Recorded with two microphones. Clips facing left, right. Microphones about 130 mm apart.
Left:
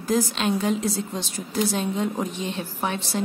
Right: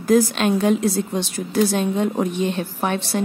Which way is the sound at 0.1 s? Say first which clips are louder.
Right 6 dB; 60° right (ahead or behind).